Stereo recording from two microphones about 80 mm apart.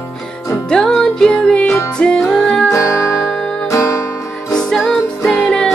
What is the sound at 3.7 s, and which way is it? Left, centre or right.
Music, left.